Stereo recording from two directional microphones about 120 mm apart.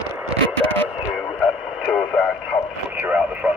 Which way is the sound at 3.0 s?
10° right (ahead or behind).